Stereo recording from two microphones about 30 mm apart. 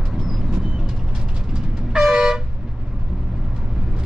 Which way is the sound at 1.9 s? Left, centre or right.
Right.